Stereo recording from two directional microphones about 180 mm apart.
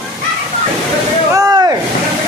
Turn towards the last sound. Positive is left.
turn(degrees=-20)  # may be behind; listen again after turning